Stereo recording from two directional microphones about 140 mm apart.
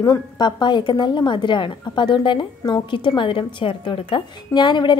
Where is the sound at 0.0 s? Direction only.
30° left (ahead or behind).